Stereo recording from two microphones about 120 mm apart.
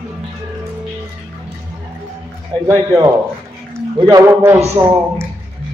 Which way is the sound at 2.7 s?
35° right (ahead or behind).